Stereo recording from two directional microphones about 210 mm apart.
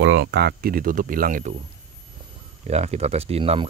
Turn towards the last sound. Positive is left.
turn(degrees=-25)  # may be behind; listen again after turning